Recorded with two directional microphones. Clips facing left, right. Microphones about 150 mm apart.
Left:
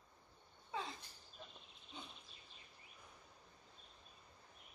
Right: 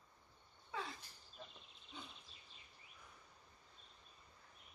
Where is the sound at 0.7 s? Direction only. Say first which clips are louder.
Left 1 dB; 20° left (ahead or behind).